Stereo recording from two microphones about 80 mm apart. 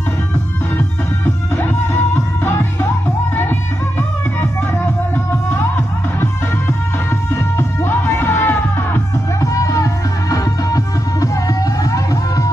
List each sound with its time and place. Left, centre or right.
0.7 s music: left
4.4 s music: left
7.5 s music: left
9.4 s music: left